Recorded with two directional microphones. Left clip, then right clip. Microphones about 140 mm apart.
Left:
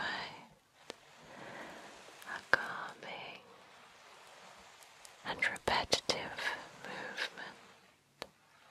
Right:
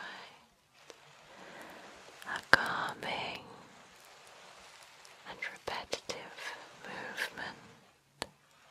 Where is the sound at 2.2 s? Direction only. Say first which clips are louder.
Right 6 dB; 20° right (ahead or behind).